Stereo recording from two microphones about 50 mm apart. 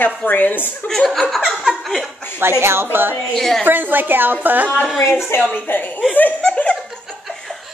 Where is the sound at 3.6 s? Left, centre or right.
Right.